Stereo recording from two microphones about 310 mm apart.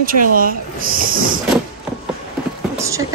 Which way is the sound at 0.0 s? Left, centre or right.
Right.